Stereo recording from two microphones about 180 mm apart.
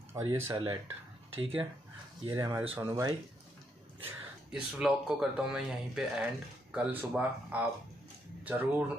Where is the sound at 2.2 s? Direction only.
15° right (ahead or behind).